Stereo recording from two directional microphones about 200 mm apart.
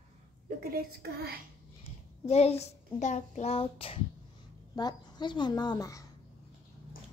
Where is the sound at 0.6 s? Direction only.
50° right (ahead or behind).